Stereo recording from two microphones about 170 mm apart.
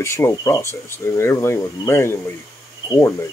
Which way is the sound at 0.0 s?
15° left (ahead or behind).